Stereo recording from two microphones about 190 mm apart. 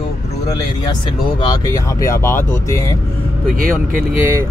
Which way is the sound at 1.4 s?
20° left (ahead or behind).